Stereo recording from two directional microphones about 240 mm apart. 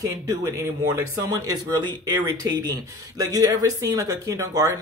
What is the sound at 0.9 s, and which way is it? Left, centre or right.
Speech, centre.